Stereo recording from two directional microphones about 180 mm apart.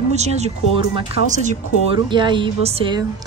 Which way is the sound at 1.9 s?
25° right (ahead or behind).